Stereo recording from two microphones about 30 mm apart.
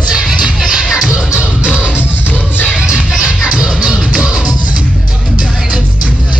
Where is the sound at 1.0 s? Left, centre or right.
Right.